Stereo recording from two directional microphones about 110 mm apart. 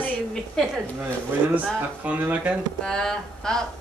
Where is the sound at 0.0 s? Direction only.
5° left (ahead or behind).